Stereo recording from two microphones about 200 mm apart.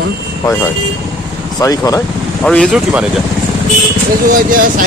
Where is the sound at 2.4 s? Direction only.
5° left (ahead or behind).